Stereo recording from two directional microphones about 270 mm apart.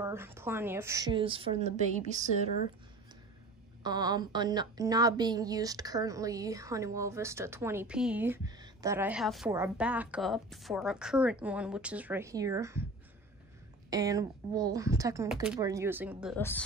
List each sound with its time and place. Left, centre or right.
0.0 s speech: centre; by 2.4 s right
3.8 s a woman's voice: centre
13.8 s a woman's voice: centre
16.3 s a woman's voice: centre